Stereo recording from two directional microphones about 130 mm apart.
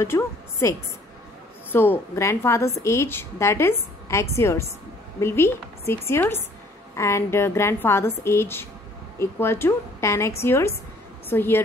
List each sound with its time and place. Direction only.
0.0 s a woman's voice: 20° left (ahead or behind)